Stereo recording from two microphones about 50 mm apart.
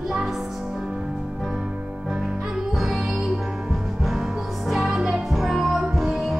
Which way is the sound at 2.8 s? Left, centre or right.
Centre.